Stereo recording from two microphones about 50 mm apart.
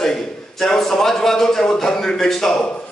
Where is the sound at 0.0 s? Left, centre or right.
Centre.